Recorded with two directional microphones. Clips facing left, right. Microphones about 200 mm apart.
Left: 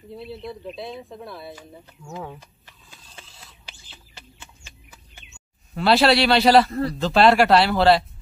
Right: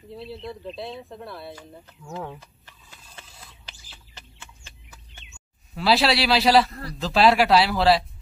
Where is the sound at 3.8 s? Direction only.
15° left (ahead or behind).